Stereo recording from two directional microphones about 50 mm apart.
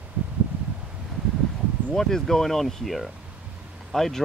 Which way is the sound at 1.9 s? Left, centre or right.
Centre.